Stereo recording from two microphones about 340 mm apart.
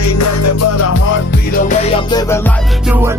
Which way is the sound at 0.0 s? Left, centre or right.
Left.